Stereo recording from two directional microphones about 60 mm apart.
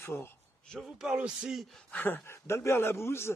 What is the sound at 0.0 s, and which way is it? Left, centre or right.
Speech, left.